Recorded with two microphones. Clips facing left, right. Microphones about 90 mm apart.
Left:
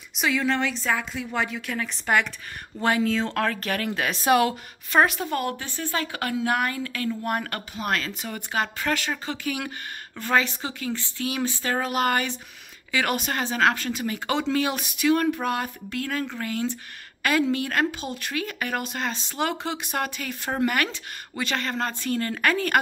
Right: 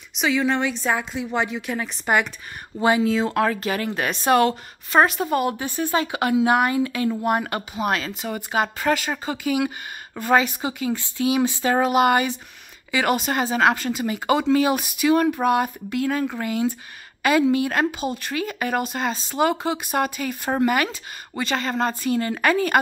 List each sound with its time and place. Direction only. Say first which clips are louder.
0.4 s speech: right 3 dB; 15° right (ahead or behind)